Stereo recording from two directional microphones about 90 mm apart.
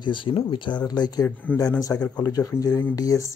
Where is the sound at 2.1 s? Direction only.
45° left (ahead or behind).